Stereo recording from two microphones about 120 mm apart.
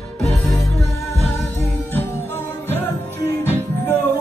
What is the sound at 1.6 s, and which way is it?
Music, 15° left (ahead or behind).